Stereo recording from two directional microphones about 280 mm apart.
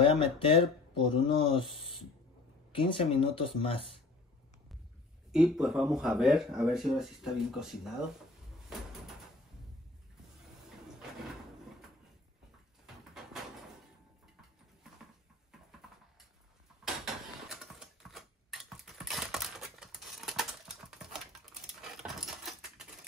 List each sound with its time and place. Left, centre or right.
0.0 s speech: centre
2.7 s speech: centre
5.3 s speech: centre
12.8 s a sound: centre
16.8 s dishes: centre
22.0 s patter: centre